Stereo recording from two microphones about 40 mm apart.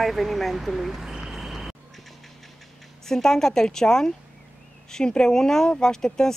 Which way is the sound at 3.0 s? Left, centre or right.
Centre.